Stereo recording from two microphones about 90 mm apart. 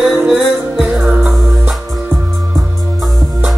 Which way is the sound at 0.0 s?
5° right (ahead or behind).